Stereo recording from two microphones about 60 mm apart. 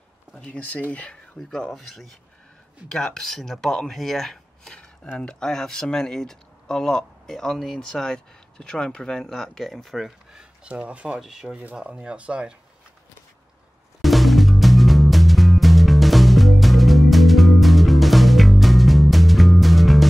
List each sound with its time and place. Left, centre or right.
0.3 s speech: left
1.5 s speech: centre
10.3 s speech: centre
11.1 s speech: centre
11.5 s speech: centre
14.0 s music: centre